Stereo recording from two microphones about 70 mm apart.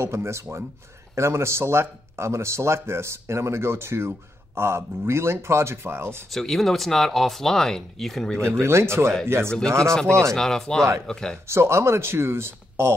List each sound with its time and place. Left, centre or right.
0.0 s speech: right
6.3 s speech: centre
8.5 s speech: right
10.3 s speech: centre
11.4 s speech: right